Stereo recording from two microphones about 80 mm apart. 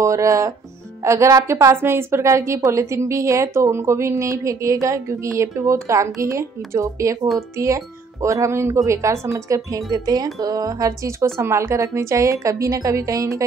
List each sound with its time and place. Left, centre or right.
0.0 s a woman's voice: right
9.8 s a woman's voice: right